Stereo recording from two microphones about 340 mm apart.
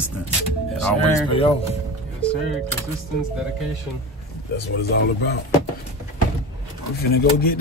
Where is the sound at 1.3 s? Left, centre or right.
Centre.